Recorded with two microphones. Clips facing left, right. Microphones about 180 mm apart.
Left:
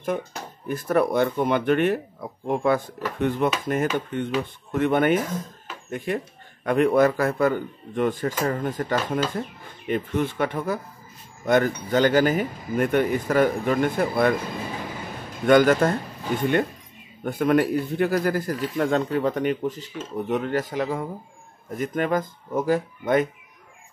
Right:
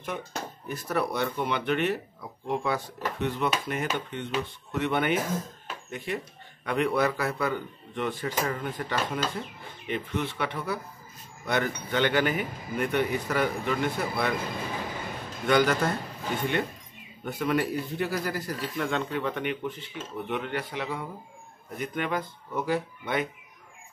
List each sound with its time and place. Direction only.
0.7 s speech: 50° left (ahead or behind)
15.4 s speech: 50° left (ahead or behind)
17.2 s speech: 50° left (ahead or behind)